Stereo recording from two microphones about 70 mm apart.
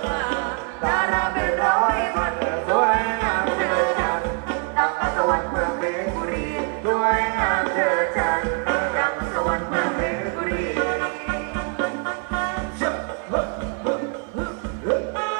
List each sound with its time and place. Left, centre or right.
0.0 s music: centre